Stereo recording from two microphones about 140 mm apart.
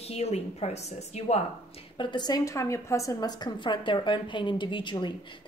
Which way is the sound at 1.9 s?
30° left (ahead or behind).